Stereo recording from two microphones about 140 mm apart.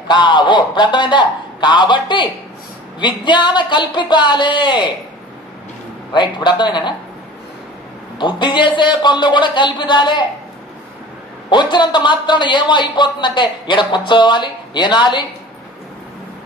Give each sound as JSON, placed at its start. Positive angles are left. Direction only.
{"t": 0.1, "sound": "speech", "side_deg": 35}
{"t": 6.1, "sound": "speech", "side_deg": 35}
{"t": 8.2, "sound": "speech", "side_deg": 35}
{"t": 11.5, "sound": "speech", "side_deg": 35}